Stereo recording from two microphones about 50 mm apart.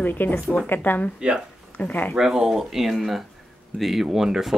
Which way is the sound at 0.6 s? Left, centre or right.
Left.